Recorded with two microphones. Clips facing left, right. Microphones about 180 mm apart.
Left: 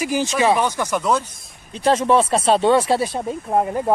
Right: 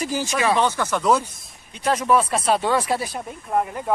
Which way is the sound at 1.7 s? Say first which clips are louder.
Left 3 dB; 30° left (ahead or behind).